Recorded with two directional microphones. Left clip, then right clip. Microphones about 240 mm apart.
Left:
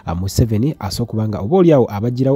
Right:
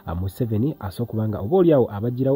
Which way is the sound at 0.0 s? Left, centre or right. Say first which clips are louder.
Left 7 dB; left.